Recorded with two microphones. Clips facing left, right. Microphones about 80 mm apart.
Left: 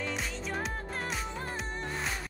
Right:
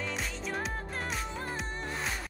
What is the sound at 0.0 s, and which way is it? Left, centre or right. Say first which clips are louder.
Music: left 1 dB; centre.